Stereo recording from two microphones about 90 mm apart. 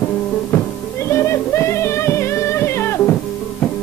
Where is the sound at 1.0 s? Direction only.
30° left (ahead or behind).